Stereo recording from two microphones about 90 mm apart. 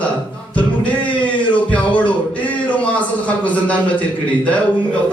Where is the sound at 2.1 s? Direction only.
15° left (ahead or behind).